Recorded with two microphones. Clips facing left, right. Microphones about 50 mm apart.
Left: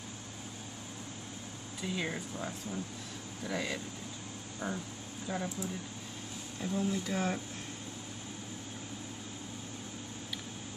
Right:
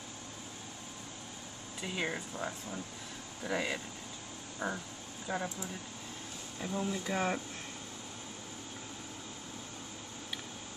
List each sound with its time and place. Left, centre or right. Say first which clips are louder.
1.8 s speech: even; centre